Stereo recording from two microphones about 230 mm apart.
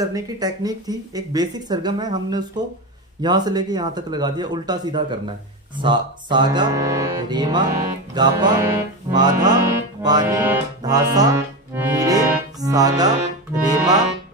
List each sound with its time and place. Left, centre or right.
0.0 s music: centre